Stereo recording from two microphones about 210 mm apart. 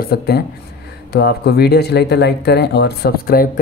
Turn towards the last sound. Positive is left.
turn(degrees=45)  # may be behind; listen again after turning